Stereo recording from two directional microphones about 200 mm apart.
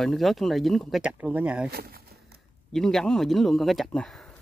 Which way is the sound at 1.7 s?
50° right (ahead or behind).